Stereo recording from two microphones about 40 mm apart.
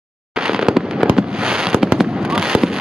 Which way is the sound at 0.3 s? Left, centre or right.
Centre.